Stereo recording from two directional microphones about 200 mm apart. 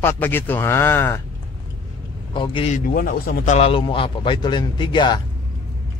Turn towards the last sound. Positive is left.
turn(degrees=20)  # may be behind; listen again after turning